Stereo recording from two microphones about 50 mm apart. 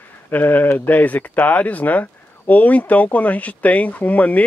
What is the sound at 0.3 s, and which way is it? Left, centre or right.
Speech, left.